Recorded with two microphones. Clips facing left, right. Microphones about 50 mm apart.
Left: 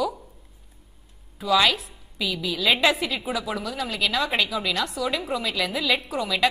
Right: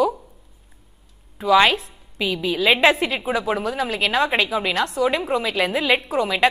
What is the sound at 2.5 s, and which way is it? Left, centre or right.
A woman's voice, right.